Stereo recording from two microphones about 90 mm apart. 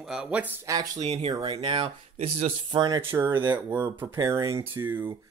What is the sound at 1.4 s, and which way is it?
Speech, 85° right.